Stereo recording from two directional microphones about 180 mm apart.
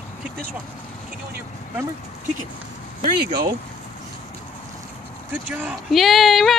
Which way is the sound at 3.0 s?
50° right (ahead or behind).